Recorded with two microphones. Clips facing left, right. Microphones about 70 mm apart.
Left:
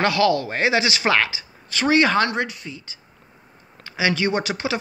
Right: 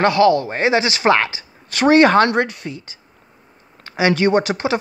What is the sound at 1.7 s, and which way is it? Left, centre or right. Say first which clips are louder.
Speech: right 6 dB; right.